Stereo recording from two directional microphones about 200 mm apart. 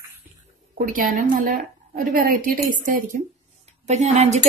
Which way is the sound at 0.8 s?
45° right (ahead or behind).